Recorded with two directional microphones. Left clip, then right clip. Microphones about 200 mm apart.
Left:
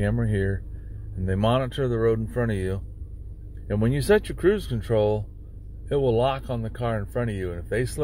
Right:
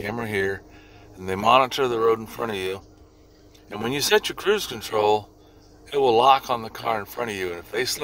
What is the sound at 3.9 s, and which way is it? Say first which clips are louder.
Speech: right 2 dB; 15° right (ahead or behind).